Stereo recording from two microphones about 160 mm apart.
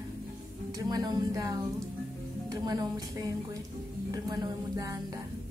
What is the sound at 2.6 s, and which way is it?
A woman's voice, 25° right (ahead or behind).